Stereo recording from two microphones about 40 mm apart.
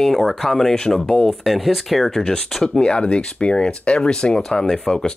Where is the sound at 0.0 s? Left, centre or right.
Centre.